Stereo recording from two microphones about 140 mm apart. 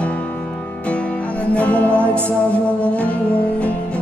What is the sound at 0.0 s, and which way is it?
Music, 10° left (ahead or behind).